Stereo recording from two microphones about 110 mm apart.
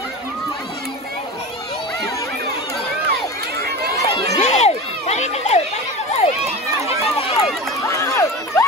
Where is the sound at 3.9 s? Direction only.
30° left (ahead or behind).